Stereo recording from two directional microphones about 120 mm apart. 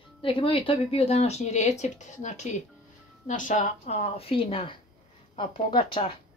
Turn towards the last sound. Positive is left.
turn(degrees=45)  # may be behind; listen again after turning